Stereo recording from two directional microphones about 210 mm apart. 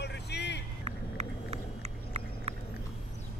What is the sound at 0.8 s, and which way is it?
Vehicle, 30° right (ahead or behind).